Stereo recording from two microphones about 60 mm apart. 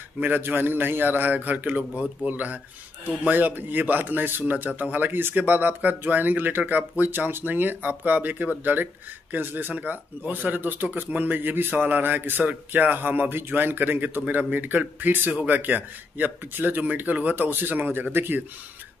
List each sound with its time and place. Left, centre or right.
0.2 s speech: right